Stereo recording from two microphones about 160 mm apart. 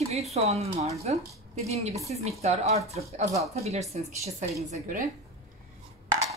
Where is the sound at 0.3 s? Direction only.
40° right (ahead or behind).